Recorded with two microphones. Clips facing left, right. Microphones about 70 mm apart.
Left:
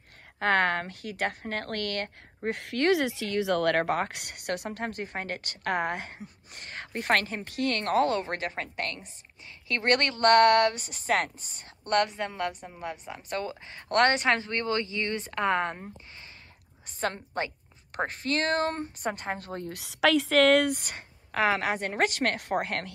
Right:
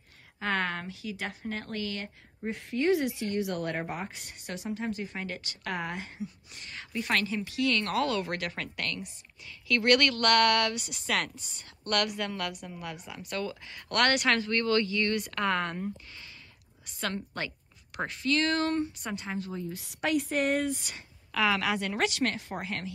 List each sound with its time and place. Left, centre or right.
0.4 s a woman's voice: left
17.0 s a woman's voice: left
17.9 s speech: left